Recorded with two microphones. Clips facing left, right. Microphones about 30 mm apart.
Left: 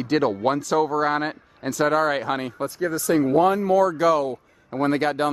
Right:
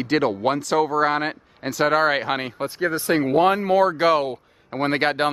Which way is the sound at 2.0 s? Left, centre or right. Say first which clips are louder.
Right 2 dB; right.